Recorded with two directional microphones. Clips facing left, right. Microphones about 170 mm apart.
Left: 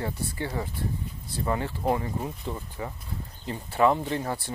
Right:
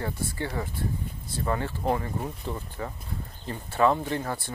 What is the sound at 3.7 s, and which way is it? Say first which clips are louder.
Speech: left 1 dB; 20° left (ahead or behind).